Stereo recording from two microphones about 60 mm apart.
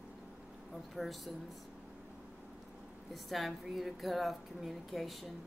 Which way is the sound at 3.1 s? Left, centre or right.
Centre.